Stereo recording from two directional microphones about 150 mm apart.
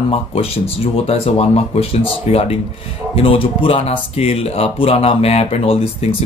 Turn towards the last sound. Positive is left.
turn(degrees=40)  # may be behind; listen again after turning